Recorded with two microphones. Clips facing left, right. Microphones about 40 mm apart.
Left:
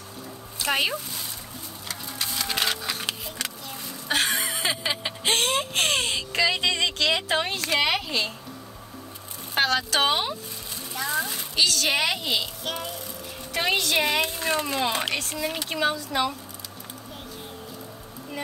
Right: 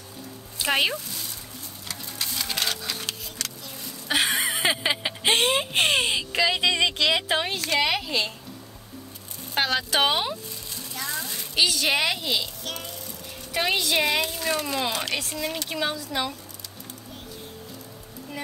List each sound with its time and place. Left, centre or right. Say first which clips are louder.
0.7 s speech: right 1 dB; centre
0.9 s speech: left 1 dB; centre
1.9 s sewing machine: left 1 dB; centre
4.1 s a sound: right 1 dB; centre
4.5 s a sound: right 3 dB; right; by 8.3 s centre
9.7 s speech: right 2 dB; centre
11.1 s a child's voice: left 5 dB; centre
11.5 s speech: right 1 dB; centre
12.0 s speech: even; centre
13.5 s speech: even; centre
14.2 s speech: left 1 dB; left
15.1 s speech: left 1 dB; centre